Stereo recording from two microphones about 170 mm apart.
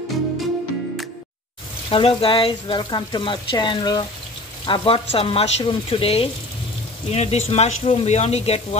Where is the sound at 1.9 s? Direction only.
35° left (ahead or behind).